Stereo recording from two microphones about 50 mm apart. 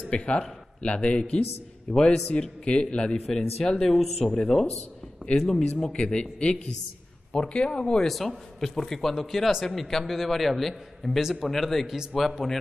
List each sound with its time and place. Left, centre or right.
0.1 s speech: left
3.9 s a man's voice: centre
5.4 s speech: centre
5.9 s speech: left
8.1 s a man's voice: centre
11.4 s a man's voice: centre